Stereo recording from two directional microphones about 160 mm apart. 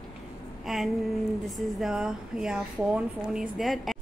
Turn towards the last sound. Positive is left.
turn(degrees=0)  # may be behind; listen again after turning